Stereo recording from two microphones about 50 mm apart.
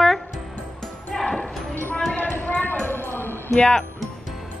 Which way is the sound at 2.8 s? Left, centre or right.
Left.